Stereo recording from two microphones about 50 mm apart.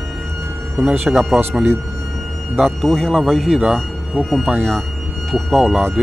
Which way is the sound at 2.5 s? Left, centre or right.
Centre.